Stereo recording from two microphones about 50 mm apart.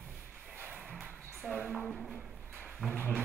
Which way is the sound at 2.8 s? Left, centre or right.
Centre.